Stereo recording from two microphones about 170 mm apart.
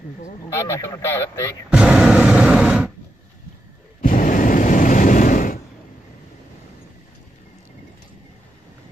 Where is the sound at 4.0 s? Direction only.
50° left (ahead or behind).